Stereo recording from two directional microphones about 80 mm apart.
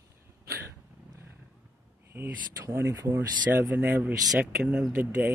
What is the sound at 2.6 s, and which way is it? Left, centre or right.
Speech, right.